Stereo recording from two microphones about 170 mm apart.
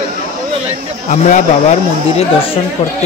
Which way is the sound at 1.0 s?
45° left (ahead or behind).